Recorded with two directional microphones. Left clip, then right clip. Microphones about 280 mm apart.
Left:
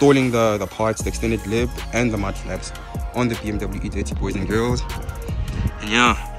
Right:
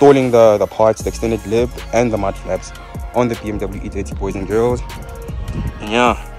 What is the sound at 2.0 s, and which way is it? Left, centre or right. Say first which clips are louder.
Speech: right 7 dB; right.